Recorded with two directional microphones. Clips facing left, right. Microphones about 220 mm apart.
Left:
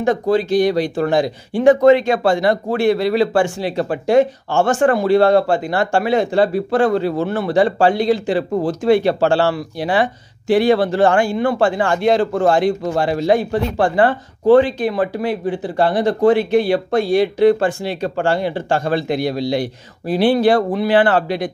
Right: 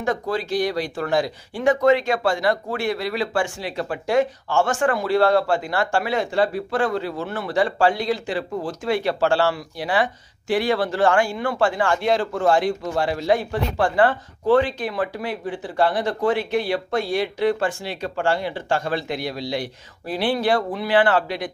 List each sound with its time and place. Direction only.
0.0 s speech: 25° left (ahead or behind)
12.8 s speech: 45° left (ahead or behind)